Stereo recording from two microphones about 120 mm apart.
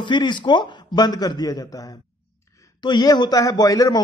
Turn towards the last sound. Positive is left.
turn(degrees=30)  # may be behind; listen again after turning